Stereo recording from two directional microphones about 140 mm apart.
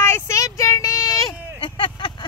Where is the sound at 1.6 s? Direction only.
35° left (ahead or behind).